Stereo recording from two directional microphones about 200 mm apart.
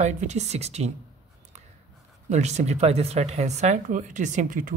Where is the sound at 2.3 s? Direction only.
35° right (ahead or behind).